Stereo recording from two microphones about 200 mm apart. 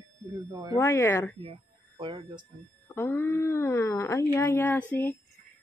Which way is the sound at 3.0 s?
10° left (ahead or behind).